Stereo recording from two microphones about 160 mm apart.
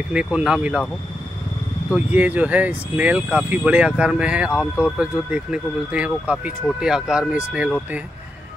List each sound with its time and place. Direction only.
0.1 s speech: 5° right (ahead or behind)
2.0 s speech: 10° right (ahead or behind)